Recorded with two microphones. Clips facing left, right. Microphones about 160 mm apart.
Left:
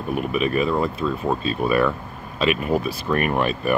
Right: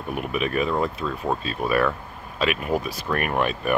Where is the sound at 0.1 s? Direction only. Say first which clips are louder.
Left 3 dB; 10° right (ahead or behind).